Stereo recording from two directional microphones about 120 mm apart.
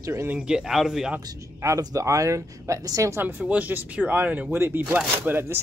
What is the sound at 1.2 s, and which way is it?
Speech, 30° right (ahead or behind).